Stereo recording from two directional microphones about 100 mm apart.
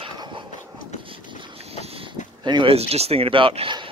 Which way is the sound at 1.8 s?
70° right (ahead or behind).